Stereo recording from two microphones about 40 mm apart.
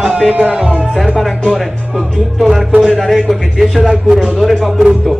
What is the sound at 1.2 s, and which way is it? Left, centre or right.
A man's voice, centre.